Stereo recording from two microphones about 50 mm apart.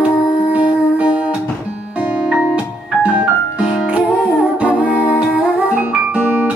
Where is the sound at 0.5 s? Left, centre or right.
Right.